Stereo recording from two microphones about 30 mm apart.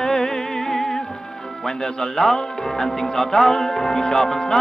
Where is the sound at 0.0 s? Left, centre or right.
Centre.